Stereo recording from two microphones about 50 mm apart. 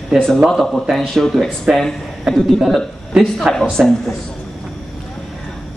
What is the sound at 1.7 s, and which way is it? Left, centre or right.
Speech, centre.